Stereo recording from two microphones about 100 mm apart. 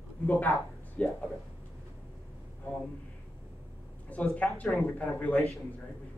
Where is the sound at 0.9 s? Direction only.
10° left (ahead or behind).